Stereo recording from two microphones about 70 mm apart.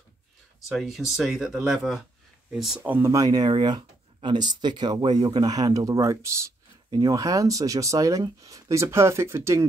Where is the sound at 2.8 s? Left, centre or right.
Right.